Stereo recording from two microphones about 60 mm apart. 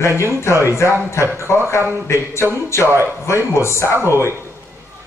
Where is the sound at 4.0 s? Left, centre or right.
Right.